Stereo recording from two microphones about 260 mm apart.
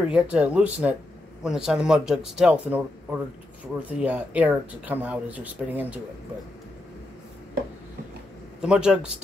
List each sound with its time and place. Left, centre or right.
0.1 s speech: centre
8.5 s speech: centre